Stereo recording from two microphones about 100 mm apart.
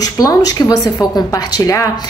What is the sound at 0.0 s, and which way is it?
A woman's voice, 40° left (ahead or behind).